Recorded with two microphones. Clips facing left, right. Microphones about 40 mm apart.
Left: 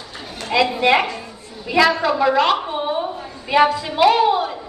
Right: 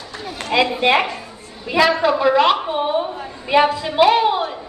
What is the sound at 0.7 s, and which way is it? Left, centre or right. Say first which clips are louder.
A woman's voice: even; centre.